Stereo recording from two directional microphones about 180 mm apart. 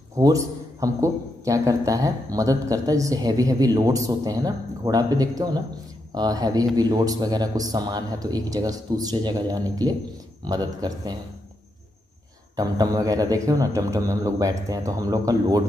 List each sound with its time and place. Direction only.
0.1 s a man's voice: 20° right (ahead or behind)
12.5 s a man's voice: 20° right (ahead or behind)